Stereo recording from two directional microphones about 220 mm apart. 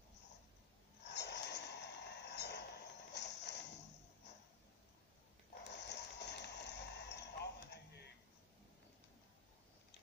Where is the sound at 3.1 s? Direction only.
50° left (ahead or behind).